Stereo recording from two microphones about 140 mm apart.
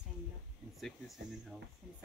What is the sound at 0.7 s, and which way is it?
Speech, centre (ahead or behind).